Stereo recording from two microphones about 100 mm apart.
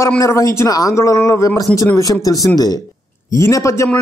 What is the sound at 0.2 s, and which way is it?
A man's voice, 35° left (ahead or behind).